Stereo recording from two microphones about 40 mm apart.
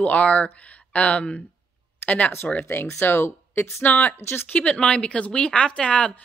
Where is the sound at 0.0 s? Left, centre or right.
Left.